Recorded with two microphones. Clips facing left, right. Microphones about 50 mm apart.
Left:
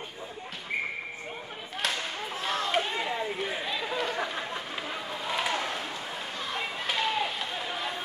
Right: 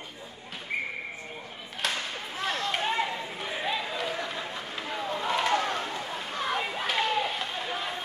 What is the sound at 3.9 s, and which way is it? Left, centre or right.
Run, centre.